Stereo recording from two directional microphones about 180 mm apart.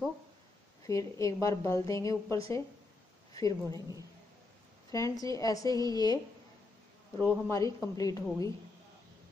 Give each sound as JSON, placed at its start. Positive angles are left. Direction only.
{"t": 0.8, "sound": "a woman's voice", "side_deg": 20}
{"t": 4.9, "sound": "a woman's voice", "side_deg": 20}
{"t": 7.4, "sound": "a woman's voice", "side_deg": 15}